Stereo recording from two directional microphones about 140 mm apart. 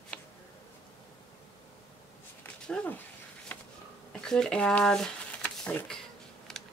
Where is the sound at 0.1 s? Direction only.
10° left (ahead or behind).